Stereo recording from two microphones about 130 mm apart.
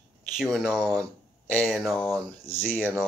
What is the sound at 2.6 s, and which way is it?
Speech, 15° left (ahead or behind).